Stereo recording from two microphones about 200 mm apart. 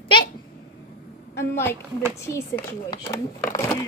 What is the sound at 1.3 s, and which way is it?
A woman's voice, 15° left (ahead or behind).